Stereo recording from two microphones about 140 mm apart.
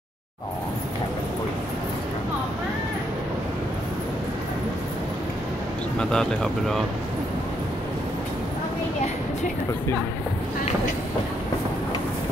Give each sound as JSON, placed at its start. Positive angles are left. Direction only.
{"t": 5.9, "sound": "speech", "side_deg": 5}